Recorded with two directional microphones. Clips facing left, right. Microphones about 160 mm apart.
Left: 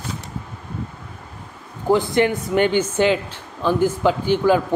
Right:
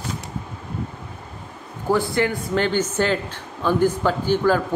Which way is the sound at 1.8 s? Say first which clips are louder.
Left 3 dB; 20° left (ahead or behind).